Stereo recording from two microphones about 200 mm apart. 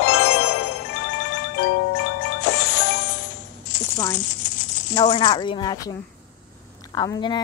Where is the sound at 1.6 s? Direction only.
60° left (ahead or behind).